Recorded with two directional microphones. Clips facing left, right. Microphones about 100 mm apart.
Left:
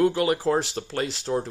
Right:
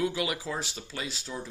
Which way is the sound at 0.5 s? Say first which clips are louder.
Left 10 dB; 65° left (ahead or behind).